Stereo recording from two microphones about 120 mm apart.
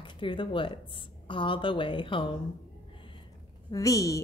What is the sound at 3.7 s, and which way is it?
Speech, 30° left (ahead or behind).